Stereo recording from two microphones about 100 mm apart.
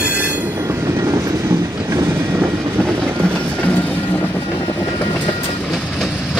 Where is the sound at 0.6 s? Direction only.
30° right (ahead or behind).